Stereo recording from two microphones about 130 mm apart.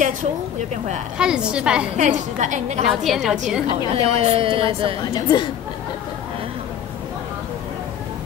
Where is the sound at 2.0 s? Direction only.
65° right (ahead or behind).